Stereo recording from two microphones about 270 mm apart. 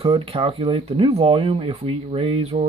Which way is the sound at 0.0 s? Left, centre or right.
Centre.